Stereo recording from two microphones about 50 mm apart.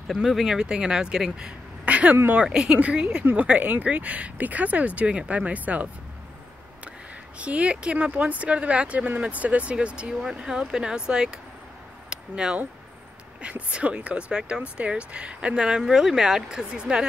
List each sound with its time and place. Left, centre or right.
0.2 s speech: centre; by 2.1 s right
2.4 s speech: centre
7.3 s speech: right
12.1 s a sound: centre
13.4 s speech: right